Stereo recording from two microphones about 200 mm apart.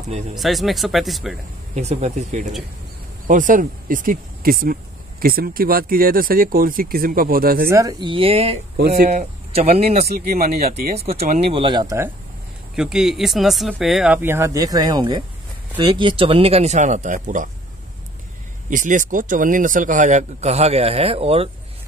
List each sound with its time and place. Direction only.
0.3 s speech: centre (ahead or behind)
1.8 s speech: 35° right (ahead or behind)
7.6 s speech: 15° right (ahead or behind)
8.7 s speech: 55° right (ahead or behind); by 10.0 s 30° right (ahead or behind)
10.0 s speech: 50° right (ahead or behind)
11.0 s speech: 30° right (ahead or behind)
12.7 s speech: centre (ahead or behind); by 17.5 s 40° right (ahead or behind)
18.7 s speech: 40° right (ahead or behind)